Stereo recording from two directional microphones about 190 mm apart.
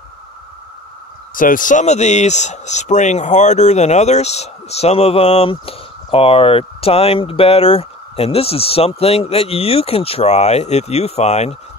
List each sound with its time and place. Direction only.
1.3 s speech: 45° left (ahead or behind)